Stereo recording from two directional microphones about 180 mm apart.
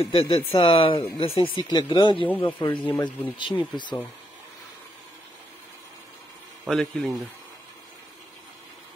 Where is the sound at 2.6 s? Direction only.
25° left (ahead or behind).